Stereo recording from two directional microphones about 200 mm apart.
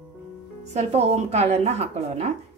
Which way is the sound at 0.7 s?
30° right (ahead or behind).